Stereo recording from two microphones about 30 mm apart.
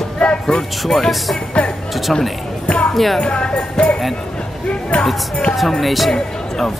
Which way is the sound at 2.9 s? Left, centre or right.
Centre.